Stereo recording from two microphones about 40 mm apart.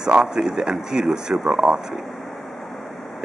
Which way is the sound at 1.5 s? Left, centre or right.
Right.